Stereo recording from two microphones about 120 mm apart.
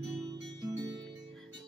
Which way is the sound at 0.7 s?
35° right (ahead or behind).